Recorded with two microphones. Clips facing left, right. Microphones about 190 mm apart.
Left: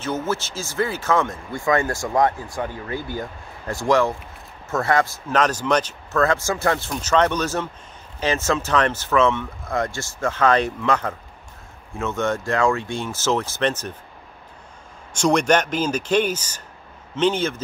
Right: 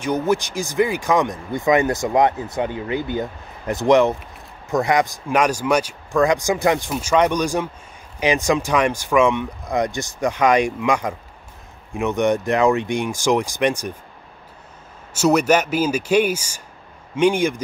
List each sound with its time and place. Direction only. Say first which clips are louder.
0.0 s speech: right 5 dB; 15° right (ahead or behind)
15.1 s speech: right 2 dB; 5° right (ahead or behind)